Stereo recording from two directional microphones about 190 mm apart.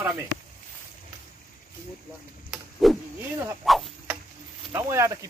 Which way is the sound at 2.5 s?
Centre (ahead or behind).